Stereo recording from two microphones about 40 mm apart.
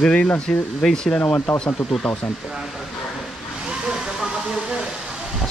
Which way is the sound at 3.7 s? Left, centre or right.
Centre.